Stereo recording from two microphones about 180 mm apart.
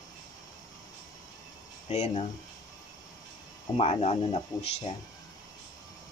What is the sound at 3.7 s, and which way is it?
Speech, 35° left (ahead or behind).